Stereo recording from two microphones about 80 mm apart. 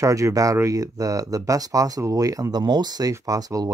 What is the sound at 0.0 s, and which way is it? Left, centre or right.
Speech, right.